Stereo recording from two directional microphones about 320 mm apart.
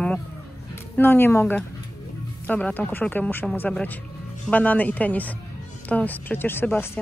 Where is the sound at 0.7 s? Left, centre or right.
Centre.